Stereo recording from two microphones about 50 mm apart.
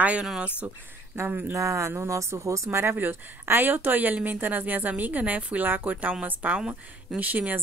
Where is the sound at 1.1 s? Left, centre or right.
Right.